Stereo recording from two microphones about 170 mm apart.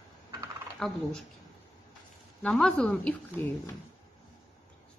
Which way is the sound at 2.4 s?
5° left (ahead or behind).